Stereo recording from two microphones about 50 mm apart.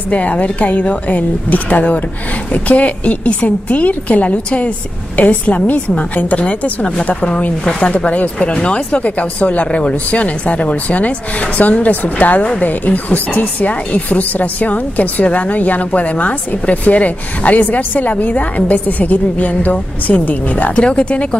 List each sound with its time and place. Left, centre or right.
0.1 s speech: left